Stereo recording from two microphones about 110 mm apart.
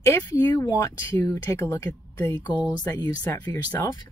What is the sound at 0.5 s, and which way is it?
Speech, 40° left (ahead or behind).